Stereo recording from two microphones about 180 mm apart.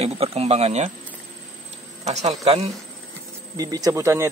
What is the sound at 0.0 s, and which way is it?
Speech, 35° right (ahead or behind).